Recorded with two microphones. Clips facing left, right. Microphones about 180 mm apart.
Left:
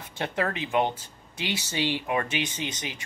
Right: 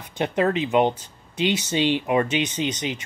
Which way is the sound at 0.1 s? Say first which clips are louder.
Right 7 dB; 20° right (ahead or behind).